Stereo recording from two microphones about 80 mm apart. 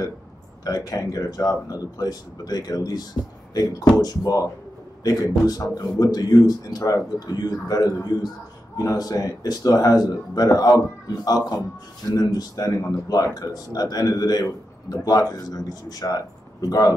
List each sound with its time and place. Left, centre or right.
0.7 s a man's voice: left